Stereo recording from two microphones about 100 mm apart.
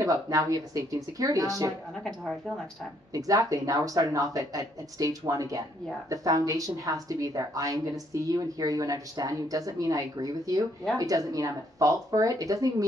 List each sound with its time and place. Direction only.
0.0 s a woman's voice: 35° right (ahead or behind)
3.1 s a woman's voice: 35° right (ahead or behind)